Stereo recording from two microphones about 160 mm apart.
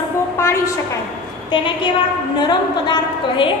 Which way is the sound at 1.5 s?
30° left (ahead or behind).